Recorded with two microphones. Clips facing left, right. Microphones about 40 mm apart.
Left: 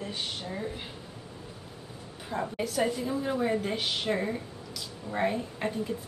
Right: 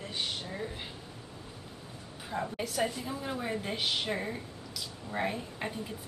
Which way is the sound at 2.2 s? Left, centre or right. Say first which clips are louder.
Left 3 dB; centre.